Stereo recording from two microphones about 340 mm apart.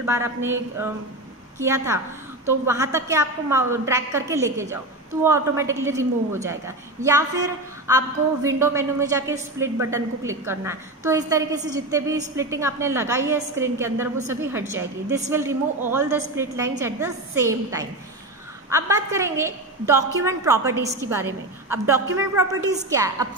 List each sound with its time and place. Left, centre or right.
0.0 s a woman's voice: centre
7.8 s a woman's voice: centre